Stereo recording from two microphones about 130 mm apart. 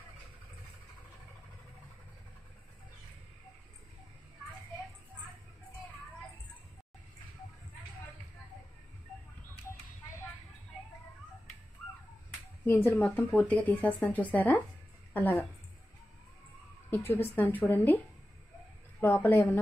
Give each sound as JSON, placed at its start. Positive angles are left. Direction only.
{"t": 12.6, "sound": "speech", "side_deg": 15}
{"t": 16.9, "sound": "speech", "side_deg": 15}